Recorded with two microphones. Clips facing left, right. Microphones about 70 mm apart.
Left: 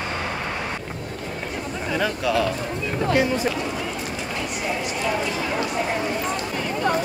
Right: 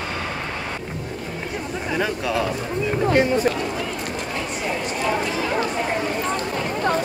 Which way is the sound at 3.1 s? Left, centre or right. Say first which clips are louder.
Right 3 dB; right.